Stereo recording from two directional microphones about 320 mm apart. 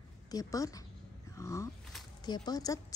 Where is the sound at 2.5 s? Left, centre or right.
Centre.